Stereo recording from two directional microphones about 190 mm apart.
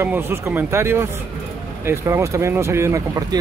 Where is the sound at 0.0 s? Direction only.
10° right (ahead or behind).